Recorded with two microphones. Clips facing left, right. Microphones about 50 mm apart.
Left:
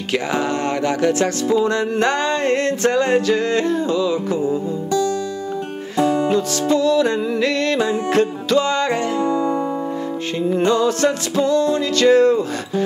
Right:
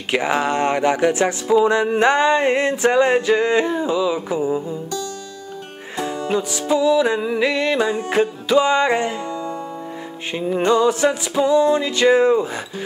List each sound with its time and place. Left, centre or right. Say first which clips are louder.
0.1 s music: right 2 dB; centre
6.7 s music: right 1 dB; centre
9.2 s music: left 8 dB; left
10.4 s music: right 1 dB; centre